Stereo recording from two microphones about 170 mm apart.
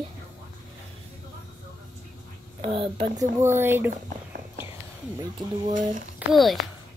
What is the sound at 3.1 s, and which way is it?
Speech, 15° right (ahead or behind).